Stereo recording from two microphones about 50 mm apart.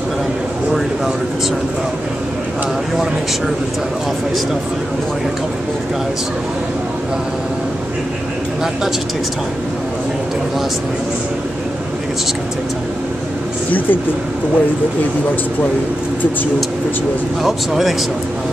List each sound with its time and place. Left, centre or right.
13.7 s speech: left
17.4 s speech: centre